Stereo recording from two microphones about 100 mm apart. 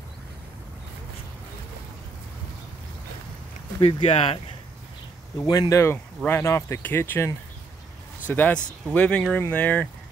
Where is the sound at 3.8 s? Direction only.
85° left.